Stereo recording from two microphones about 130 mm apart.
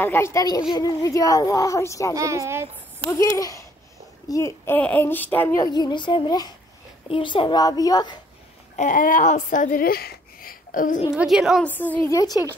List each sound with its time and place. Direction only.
0.0 s speech: 20° left (ahead or behind)
2.1 s speech: 25° right (ahead or behind)
3.2 s speech: 25° left (ahead or behind)
4.7 s speech: 10° left (ahead or behind)
5.6 s a child's voice: 35° left (ahead or behind)
8.7 s speech: 85° left
10.4 s a sound: 90° left
11.1 s a woman's voice: 5° right (ahead or behind)
11.6 s speech: 15° left (ahead or behind)
12.2 s speech: 30° left (ahead or behind)